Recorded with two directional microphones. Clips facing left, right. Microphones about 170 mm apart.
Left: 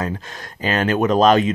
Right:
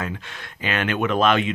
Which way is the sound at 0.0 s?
35° left (ahead or behind).